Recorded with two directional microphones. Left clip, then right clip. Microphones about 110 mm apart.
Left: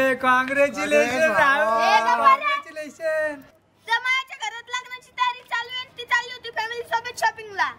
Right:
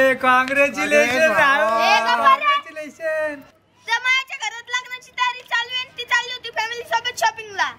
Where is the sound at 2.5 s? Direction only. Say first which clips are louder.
Right 5 dB; 15° left (ahead or behind).